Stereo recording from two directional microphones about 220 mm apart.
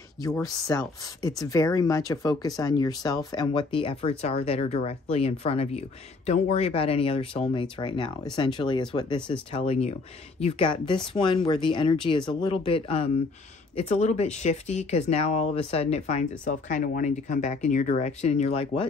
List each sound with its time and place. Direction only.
0.2 s speech: 15° left (ahead or behind)